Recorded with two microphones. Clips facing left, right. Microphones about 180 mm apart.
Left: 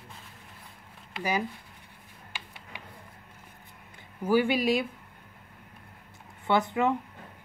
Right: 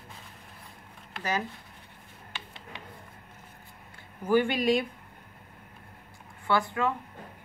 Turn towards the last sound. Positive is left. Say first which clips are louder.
# left 2 dB
turn(degrees=20)  # may be behind; listen again after turning